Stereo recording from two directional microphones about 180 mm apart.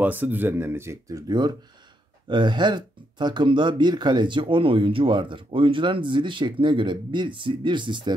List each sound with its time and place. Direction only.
0.0 s speech: 10° right (ahead or behind); by 8.1 s 25° right (ahead or behind)